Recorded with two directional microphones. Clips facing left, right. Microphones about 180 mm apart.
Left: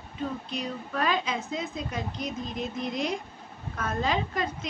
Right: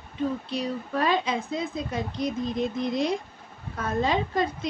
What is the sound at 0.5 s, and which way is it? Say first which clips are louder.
Speech: right 4 dB; 30° right (ahead or behind).